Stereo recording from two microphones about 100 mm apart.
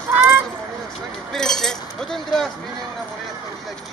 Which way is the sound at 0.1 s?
20° right (ahead or behind).